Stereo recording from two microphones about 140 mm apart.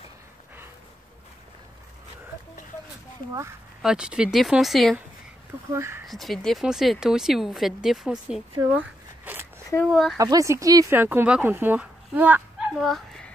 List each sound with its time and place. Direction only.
3.8 s speech: 5° right (ahead or behind)
5.7 s speech: 20° right (ahead or behind)
6.0 s speech: centre (ahead or behind)
8.7 s a sound: 10° right (ahead or behind)
9.8 s speech: centre (ahead or behind)
10.1 s speech: 25° right (ahead or behind); by 13.3 s centre (ahead or behind)